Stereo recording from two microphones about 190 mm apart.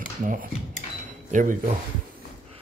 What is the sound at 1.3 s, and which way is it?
Speech, 45° right (ahead or behind).